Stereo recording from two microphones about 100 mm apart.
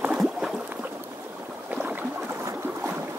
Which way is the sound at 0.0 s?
5° right (ahead or behind).